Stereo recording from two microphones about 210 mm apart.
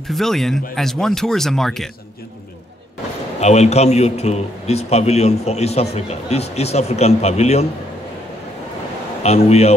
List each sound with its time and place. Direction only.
0.0 s speech: centre (ahead or behind)
3.3 s a man's voice: 30° left (ahead or behind)
9.2 s a man's voice: 30° left (ahead or behind)